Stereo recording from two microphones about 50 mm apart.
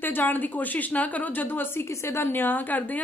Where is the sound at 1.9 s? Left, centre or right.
Left.